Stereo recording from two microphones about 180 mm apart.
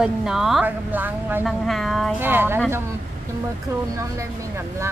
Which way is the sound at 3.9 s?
15° right (ahead or behind).